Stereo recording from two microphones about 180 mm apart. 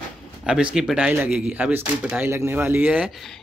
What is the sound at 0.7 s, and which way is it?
Speech, 5° right (ahead or behind).